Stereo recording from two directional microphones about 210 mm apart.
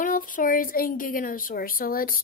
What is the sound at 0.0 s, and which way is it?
A woman's voice, 40° left (ahead or behind).